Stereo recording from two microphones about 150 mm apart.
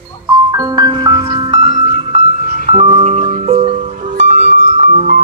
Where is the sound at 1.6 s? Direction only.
45° right (ahead or behind).